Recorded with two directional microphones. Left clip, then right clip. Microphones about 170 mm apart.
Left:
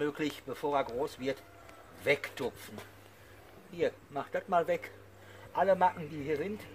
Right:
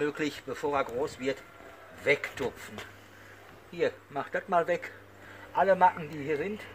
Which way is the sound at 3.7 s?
15° right (ahead or behind).